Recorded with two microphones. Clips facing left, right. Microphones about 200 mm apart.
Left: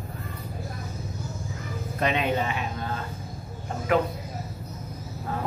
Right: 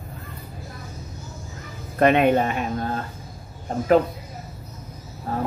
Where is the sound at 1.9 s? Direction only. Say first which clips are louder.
Right 9 dB; 55° right (ahead or behind).